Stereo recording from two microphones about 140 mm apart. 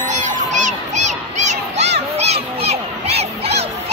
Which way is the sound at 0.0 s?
60° right (ahead or behind).